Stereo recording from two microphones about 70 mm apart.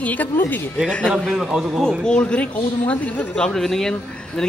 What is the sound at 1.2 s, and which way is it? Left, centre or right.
Speech, centre.